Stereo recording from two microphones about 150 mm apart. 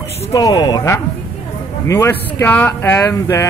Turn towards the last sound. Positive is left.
turn(degrees=20)  # may be behind; listen again after turning